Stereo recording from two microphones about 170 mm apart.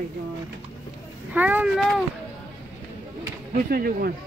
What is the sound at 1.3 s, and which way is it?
Speech, 10° right (ahead or behind).